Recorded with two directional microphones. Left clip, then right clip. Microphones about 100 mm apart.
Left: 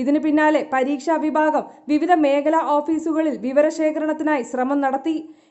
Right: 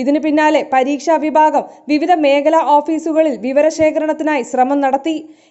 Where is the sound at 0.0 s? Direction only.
15° right (ahead or behind).